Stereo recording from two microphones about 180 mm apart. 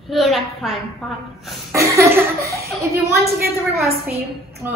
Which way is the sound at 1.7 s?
15° right (ahead or behind).